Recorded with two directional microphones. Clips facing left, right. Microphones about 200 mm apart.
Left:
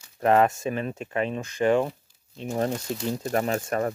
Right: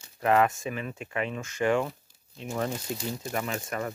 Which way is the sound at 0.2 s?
35° left (ahead or behind).